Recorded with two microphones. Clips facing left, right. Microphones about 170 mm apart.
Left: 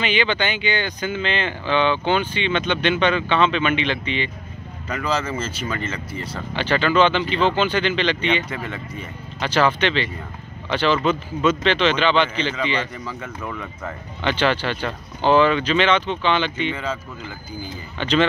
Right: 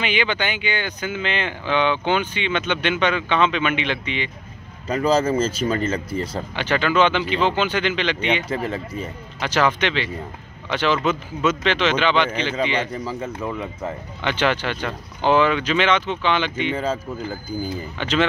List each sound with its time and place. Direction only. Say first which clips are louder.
0.0 s speech: left 1 dB; 10° right (ahead or behind)
4.8 s speech: right 6 dB; 35° right (ahead or behind)
6.5 s speech: left 2 dB; 10° right (ahead or behind)
8.5 s speech: right 5 dB; 35° right (ahead or behind)
9.4 s speech: left 1 dB; 10° right (ahead or behind)
12.9 s speech: right 4 dB; 35° right (ahead or behind)
14.2 s speech: left 1 dB; 10° right (ahead or behind)
16.7 s speech: right 4 dB; 40° right (ahead or behind)
17.9 s speech: left 3 dB; 10° right (ahead or behind)